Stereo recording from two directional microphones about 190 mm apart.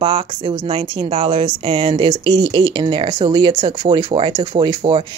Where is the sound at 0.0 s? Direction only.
30° right (ahead or behind).